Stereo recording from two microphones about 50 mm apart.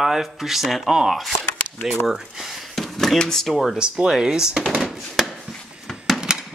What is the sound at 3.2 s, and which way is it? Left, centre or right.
Speech, centre.